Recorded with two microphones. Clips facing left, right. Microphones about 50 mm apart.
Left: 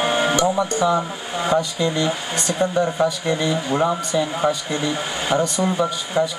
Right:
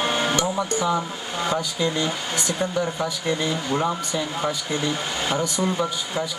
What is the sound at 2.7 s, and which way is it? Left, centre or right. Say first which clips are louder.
Speech: left 6 dB; left.